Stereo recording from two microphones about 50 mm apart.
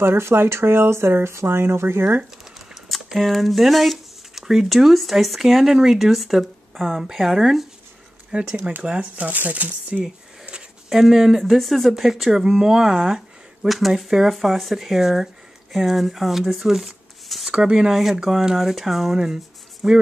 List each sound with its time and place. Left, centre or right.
0.0 s speech: right
2.7 s a sound: centre
3.2 s speech: centre
8.3 s speech: right
10.9 s speech: centre
17.5 s speech: centre